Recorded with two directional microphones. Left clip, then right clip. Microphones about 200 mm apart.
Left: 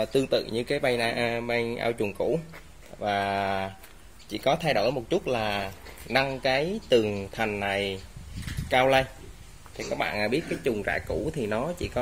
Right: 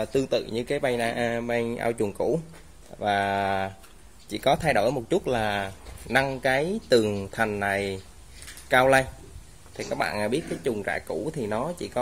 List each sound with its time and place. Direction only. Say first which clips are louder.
0.0 s speech: even; 5° right (ahead or behind); by 10.3 s 20° right (ahead or behind)
10.3 s speech: even; centre (ahead or behind)